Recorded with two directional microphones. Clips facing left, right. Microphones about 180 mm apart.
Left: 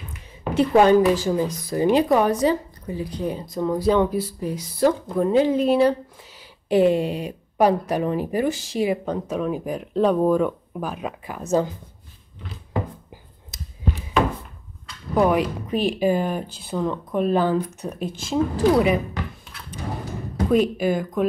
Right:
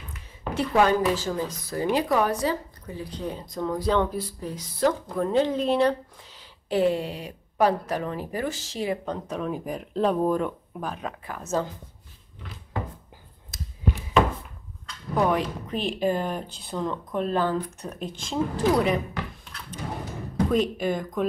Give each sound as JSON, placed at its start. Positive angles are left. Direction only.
{"t": 0.4, "sound": "speech", "side_deg": 20}
{"t": 13.5, "sound": "a sound", "side_deg": 20}
{"t": 15.1, "sound": "speech", "side_deg": 10}
{"t": 20.4, "sound": "speech", "side_deg": 5}